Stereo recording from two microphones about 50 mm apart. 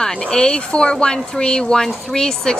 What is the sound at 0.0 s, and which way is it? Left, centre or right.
Speech, centre.